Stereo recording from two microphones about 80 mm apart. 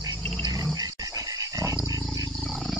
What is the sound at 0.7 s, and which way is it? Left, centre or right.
Dog, right.